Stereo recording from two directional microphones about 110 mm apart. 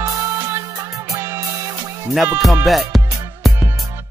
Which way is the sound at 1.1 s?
25° right (ahead or behind).